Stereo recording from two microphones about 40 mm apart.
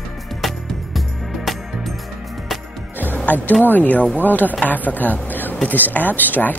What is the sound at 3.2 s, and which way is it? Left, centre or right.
A woman's voice, left.